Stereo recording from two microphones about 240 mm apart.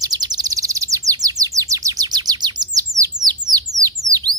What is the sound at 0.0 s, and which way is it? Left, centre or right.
Chirp, centre.